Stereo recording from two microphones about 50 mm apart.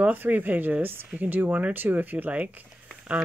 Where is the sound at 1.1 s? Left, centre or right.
Right.